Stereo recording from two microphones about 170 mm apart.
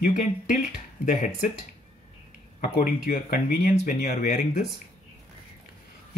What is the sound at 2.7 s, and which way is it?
Speech, 60° left (ahead or behind).